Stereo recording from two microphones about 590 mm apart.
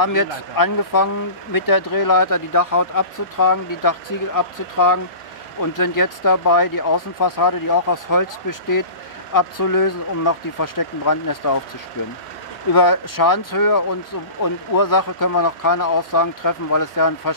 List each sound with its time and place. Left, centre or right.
0.0 s speech: left
12.7 s speech: left